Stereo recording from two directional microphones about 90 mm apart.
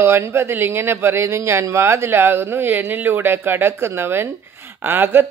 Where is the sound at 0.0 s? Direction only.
30° right (ahead or behind).